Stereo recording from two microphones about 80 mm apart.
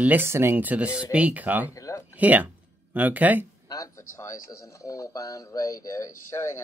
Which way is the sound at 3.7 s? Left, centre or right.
Left.